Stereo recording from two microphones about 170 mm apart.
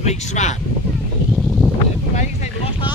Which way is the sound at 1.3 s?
Centre (ahead or behind).